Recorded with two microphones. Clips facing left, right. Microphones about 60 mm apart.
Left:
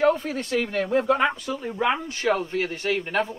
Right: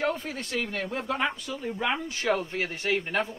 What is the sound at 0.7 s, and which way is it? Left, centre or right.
Speech, left.